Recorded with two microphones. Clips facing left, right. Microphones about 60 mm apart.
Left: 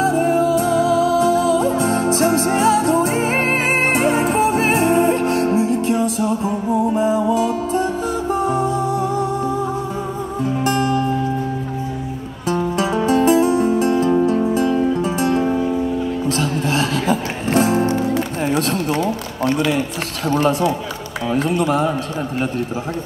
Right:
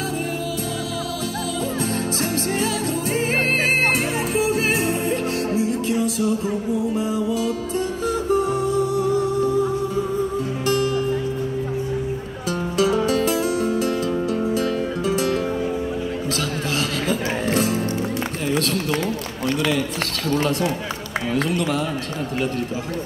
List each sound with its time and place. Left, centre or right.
0.0 s music: left
10.6 s music: left
12.4 s music: left
18.5 s a sound: left
20.2 s run: left
21.5 s speech: left